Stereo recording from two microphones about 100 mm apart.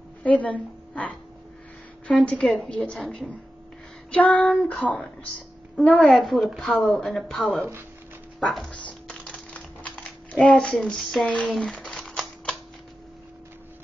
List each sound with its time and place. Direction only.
0.2 s a woman's voice: 15° left (ahead or behind)
2.0 s child singing: 10° left (ahead or behind)
6.0 s a woman's voice: centre (ahead or behind)
9.8 s speech: 10° left (ahead or behind)
11.4 s typewriter: 5° left (ahead or behind)